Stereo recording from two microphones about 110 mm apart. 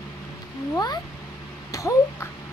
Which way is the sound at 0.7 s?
35° left (ahead or behind).